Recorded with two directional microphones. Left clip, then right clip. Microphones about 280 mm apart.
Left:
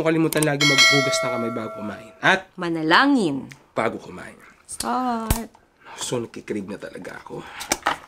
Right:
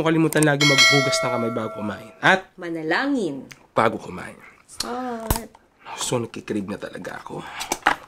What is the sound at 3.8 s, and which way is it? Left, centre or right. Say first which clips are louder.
Speech: right 4 dB; right.